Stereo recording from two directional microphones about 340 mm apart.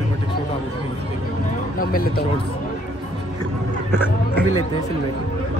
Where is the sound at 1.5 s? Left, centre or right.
Left.